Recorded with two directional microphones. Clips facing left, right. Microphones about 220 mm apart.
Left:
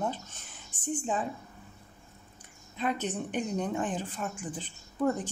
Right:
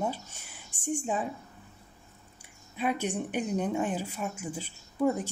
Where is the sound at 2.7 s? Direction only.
10° right (ahead or behind).